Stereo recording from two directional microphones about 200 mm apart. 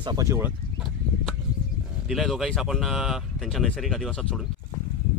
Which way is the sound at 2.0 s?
Centre (ahead or behind).